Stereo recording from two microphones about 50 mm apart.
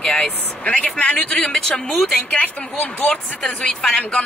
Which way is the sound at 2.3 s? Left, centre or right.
Left.